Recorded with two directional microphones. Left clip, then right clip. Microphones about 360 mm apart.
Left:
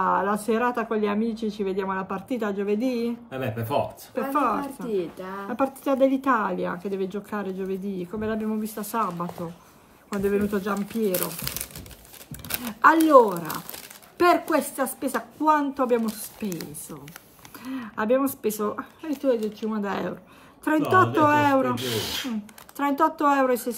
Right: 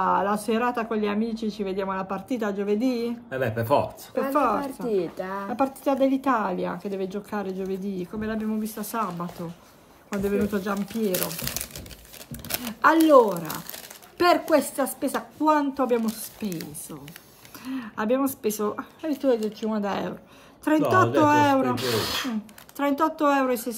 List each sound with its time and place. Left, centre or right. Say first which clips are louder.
0.0 s speech: even; centre
12.3 s crumpling: right 1 dB; centre
14.1 s speech: even; centre
21.6 s speech: right 2 dB; centre
22.8 s speech: left 1 dB; centre